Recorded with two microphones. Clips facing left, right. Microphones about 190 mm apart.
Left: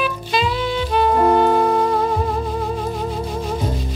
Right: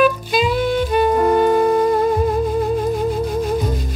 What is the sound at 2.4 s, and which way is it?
Music, 50° right (ahead or behind).